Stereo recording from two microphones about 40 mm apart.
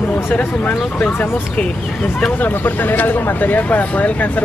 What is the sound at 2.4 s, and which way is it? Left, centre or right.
Speech, left.